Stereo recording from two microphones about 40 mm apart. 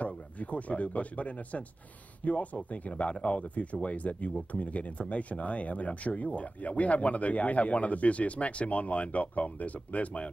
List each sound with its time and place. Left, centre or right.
0.0 s speech: left